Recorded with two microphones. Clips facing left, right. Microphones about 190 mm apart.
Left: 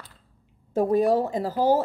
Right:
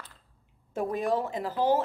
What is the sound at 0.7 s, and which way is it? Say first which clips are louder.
Speech: left 8 dB; 35° left (ahead or behind).